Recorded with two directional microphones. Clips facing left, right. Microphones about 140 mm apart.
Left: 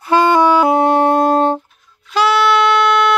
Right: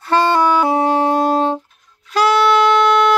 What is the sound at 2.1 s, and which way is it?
Wind instrument, 5° left (ahead or behind).